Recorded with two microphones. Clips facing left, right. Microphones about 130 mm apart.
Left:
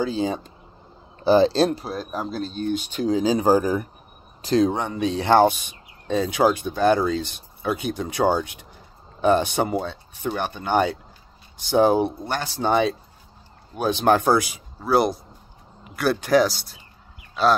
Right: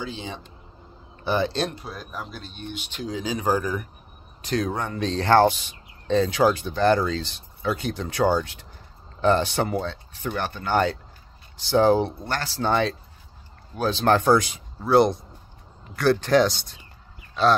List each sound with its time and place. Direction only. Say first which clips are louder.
0.0 s speech: left 10 dB; 40° left (ahead or behind); by 16.8 s 5° left (ahead or behind)